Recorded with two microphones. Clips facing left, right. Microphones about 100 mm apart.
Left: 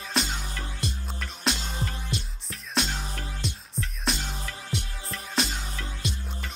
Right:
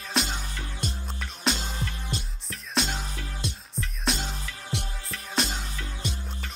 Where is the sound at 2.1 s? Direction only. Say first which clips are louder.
Left 1 dB; 40° right (ahead or behind).